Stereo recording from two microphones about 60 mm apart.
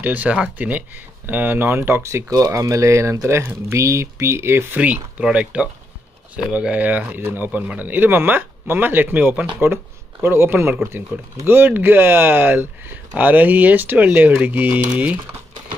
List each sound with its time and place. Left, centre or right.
0.0 s speech: right
2.0 s speech: right
4.7 s speech: right
10.2 s speech: right